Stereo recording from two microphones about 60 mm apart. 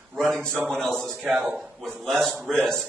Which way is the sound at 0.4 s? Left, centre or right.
Right.